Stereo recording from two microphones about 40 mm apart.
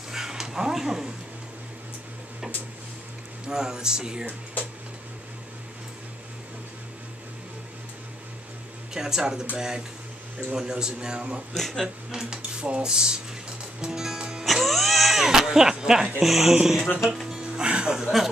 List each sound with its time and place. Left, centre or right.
0.1 s dog: centre
3.4 s music: centre
8.9 s music: centre
10.5 s cutlery: centre
11.5 s speech: centre
12.1 s cutlery: centre
13.7 s music: centre
14.4 s music: centre
15.2 s speech: centre
16.6 s music: centre
17.6 s music: right
17.9 s a sound: centre